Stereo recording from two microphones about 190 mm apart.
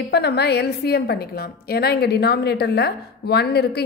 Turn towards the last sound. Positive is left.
turn(degrees=60)  # may be behind; listen again after turning